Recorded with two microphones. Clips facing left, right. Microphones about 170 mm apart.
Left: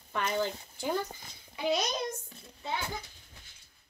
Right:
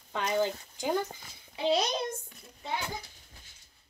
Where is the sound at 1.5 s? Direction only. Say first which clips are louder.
Right 3 dB; 30° right (ahead or behind).